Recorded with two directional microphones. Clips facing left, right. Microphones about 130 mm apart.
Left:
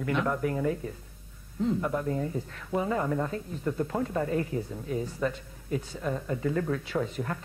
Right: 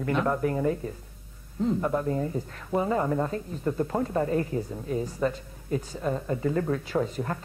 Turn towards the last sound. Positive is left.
turn(degrees=-35)  # may be behind; listen again after turning